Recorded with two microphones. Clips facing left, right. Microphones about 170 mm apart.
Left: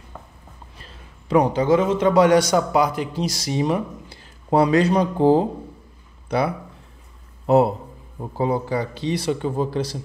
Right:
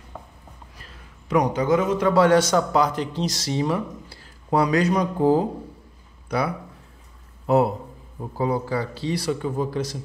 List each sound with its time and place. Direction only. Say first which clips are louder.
0.7 s a man's voice: left 2 dB; 25° left (ahead or behind)